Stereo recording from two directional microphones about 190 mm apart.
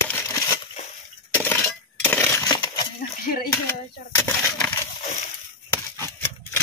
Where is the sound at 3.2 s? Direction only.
50° left (ahead or behind).